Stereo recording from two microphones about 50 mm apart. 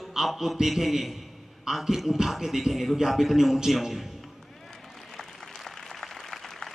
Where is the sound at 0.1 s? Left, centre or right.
Centre.